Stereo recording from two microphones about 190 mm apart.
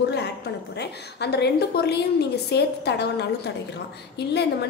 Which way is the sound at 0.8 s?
60° left (ahead or behind).